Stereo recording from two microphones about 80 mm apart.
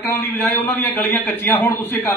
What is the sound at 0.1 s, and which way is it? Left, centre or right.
A man's voice, left.